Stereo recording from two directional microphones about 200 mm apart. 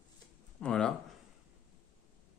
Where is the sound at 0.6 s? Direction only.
5° left (ahead or behind).